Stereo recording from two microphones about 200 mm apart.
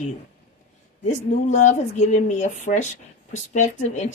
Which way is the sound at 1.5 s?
35° left (ahead or behind).